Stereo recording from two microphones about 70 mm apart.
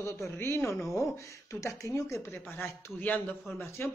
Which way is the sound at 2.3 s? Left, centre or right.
Left.